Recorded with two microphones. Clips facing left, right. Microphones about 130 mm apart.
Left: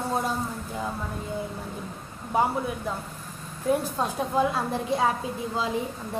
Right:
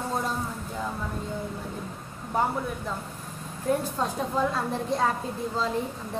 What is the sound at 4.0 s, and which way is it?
A woman's voice, 10° left (ahead or behind).